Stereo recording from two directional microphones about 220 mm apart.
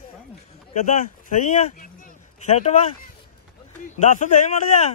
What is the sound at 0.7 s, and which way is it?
Speech, 35° left (ahead or behind).